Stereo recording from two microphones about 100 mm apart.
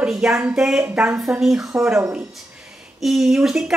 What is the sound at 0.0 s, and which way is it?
A woman's voice, 5° right (ahead or behind).